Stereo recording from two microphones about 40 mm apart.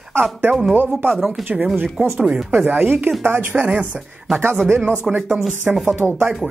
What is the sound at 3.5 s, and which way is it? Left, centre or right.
Speech, right.